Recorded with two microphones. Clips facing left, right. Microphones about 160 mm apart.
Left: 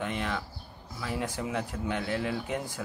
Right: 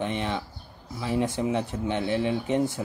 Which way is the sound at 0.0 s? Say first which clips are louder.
Right 4 dB; 25° right (ahead or behind).